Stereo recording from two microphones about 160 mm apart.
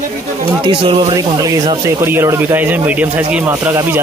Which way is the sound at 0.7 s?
30° right (ahead or behind).